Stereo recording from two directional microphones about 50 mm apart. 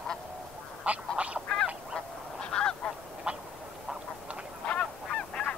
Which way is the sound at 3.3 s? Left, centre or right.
Right.